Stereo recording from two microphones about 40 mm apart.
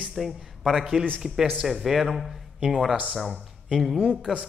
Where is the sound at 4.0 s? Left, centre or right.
Centre.